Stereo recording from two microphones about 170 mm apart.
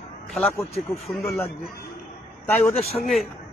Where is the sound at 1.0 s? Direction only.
Centre (ahead or behind).